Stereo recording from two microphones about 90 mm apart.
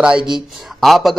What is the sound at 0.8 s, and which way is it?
Speech, centre (ahead or behind).